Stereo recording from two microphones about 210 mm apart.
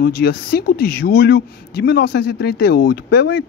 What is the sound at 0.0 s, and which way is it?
Speech, 50° left (ahead or behind).